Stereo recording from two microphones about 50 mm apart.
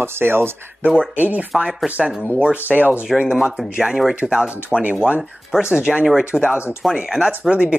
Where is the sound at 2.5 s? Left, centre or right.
Right.